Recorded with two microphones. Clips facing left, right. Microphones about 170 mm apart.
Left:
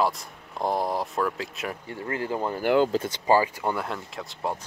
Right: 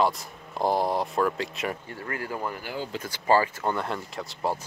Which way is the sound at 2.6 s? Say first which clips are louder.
Left 13 dB; 65° left (ahead or behind).